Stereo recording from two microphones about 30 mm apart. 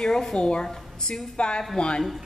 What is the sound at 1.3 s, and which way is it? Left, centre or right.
Speech, left.